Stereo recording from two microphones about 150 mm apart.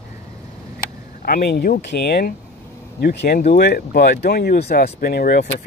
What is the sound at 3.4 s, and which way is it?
Speech, 80° left.